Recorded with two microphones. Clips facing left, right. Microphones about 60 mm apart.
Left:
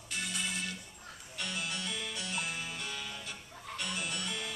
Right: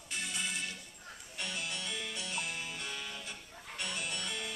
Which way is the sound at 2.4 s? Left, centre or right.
Centre.